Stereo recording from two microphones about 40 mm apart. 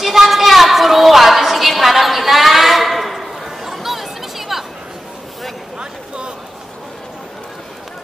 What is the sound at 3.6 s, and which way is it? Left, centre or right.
Chatter, centre.